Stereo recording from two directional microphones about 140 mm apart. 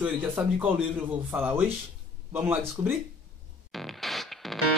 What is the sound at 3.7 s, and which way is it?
Music, centre (ahead or behind).